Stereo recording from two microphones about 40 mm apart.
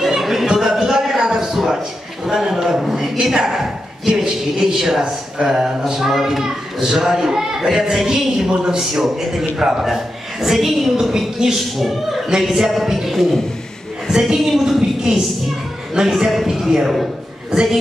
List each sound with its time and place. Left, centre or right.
0.0 s a sound: centre
2.2 s a woman's voice: centre
15.9 s a woman's voice: centre